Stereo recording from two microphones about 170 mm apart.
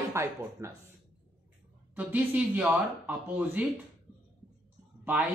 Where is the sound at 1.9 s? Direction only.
10° right (ahead or behind).